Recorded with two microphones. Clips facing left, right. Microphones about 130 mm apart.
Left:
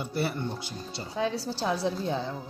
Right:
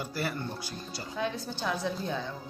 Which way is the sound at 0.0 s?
25° left (ahead or behind).